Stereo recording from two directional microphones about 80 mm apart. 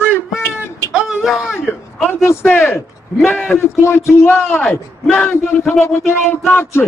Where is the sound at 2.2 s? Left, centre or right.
Left.